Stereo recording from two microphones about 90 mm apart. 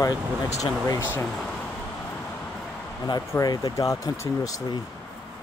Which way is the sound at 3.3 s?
40° left (ahead or behind).